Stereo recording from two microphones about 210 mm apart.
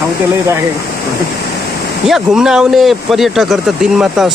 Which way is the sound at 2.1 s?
5° right (ahead or behind).